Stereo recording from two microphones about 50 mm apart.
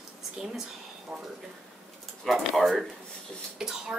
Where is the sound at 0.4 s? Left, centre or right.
Centre.